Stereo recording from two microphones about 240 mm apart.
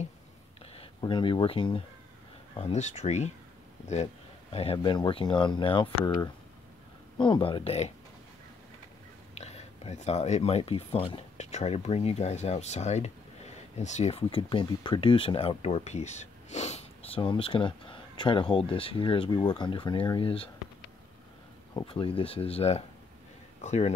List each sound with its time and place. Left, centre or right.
0.7 s speech: left
9.4 s speech: left
21.7 s speech: left